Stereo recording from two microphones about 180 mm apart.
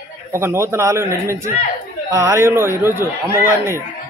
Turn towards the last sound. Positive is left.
turn(degrees=-10)  # may be behind; listen again after turning